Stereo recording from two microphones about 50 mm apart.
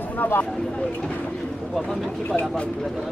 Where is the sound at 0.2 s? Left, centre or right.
Left.